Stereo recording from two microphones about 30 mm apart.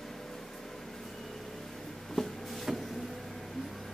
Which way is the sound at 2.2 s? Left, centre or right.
Left.